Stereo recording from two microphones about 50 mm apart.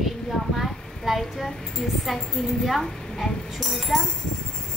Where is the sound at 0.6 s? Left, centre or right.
Centre.